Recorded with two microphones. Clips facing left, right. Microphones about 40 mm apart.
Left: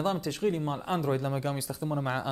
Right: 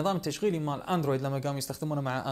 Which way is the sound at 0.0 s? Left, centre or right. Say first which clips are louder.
Even; centre.